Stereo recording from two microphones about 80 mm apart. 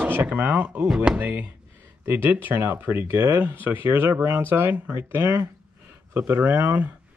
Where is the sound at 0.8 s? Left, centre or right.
Centre.